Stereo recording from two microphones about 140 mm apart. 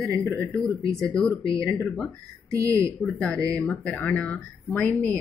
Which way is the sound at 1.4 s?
20° right (ahead or behind).